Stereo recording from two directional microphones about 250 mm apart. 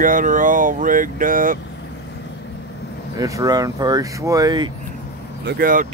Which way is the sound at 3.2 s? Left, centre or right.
Centre.